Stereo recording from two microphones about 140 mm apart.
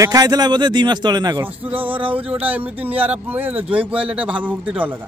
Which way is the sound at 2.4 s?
10° right (ahead or behind).